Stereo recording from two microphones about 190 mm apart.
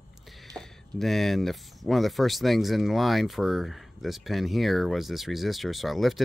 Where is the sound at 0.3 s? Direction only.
Centre (ahead or behind).